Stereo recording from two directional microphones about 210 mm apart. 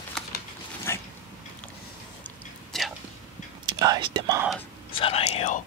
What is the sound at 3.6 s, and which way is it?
Whispering, 20° right (ahead or behind).